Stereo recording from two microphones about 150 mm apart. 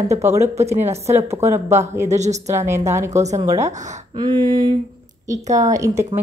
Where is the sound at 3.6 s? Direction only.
55° right (ahead or behind).